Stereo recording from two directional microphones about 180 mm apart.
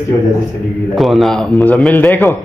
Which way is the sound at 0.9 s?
Centre (ahead or behind).